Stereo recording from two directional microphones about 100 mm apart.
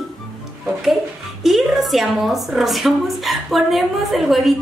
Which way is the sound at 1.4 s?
Centre (ahead or behind).